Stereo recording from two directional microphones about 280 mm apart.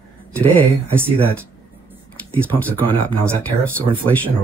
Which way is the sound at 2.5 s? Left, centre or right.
Centre.